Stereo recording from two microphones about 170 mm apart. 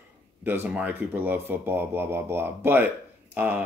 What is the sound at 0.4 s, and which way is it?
Speech, 10° right (ahead or behind).